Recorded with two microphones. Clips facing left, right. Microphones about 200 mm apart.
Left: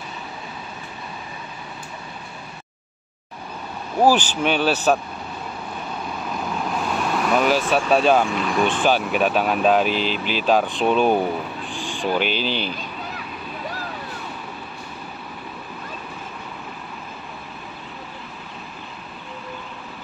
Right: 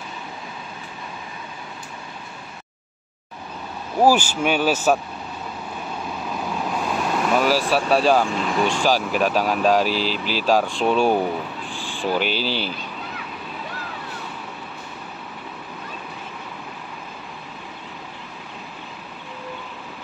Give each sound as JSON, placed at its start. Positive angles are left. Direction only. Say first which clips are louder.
{"t": 4.0, "sound": "speech", "louder": "even", "side_deg": -10}
{"t": 6.7, "sound": "vehicle", "louder": "even", "side_deg": -5}
{"t": 7.7, "sound": "speech", "louder": "left 1 dB", "side_deg": 0}
{"t": 9.9, "sound": "speech", "louder": "left 1 dB", "side_deg": -40}
{"t": 10.4, "sound": "speech", "louder": "even", "side_deg": 0}
{"t": 11.7, "sound": "a sound", "louder": "left 1 dB", "side_deg": 15}
{"t": 12.4, "sound": "speech", "louder": "even", "side_deg": -5}